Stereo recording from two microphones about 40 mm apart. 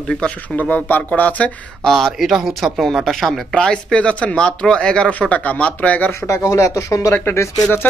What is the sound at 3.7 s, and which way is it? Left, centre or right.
Speech, left.